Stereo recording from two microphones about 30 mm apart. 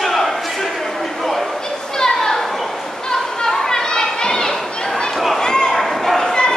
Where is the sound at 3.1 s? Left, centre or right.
Left.